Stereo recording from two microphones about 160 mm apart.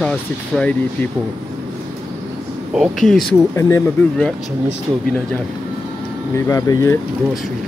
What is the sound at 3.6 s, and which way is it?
Speech, 20° left (ahead or behind).